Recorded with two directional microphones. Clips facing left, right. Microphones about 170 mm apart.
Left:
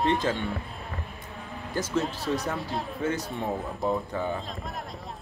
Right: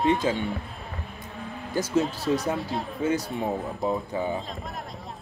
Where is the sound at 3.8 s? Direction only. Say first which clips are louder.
Even; centre (ahead or behind).